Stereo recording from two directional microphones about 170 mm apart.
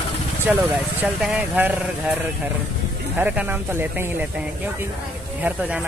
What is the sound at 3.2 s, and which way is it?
Speech, 10° right (ahead or behind).